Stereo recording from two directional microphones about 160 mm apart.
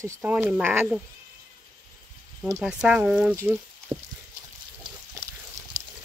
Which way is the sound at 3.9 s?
35° right (ahead or behind).